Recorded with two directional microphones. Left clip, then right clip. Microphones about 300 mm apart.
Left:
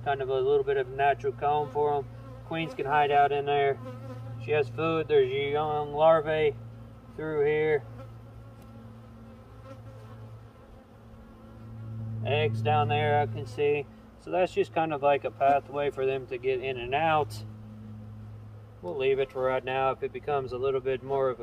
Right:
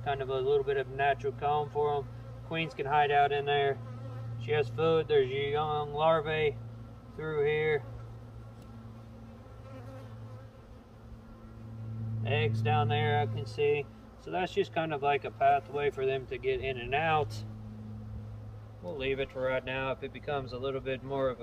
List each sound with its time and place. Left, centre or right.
0.0 s speech: centre
12.7 s speech: centre
18.9 s speech: centre